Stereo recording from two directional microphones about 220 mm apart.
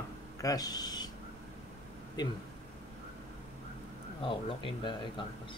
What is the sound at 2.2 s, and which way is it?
Speech, 20° left (ahead or behind).